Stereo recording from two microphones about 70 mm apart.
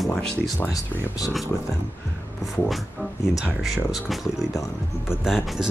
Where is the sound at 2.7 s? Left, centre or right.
Centre.